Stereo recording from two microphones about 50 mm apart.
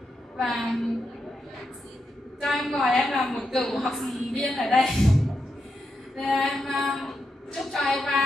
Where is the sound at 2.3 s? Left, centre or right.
Centre.